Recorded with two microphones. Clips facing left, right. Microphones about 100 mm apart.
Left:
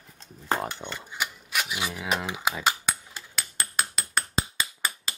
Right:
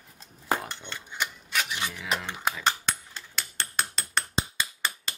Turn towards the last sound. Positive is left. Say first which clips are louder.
# left 1 dB
turn(degrees=5)  # may be behind; listen again after turning